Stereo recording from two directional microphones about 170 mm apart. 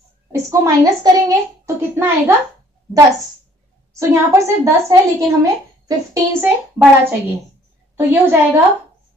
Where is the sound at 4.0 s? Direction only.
15° right (ahead or behind).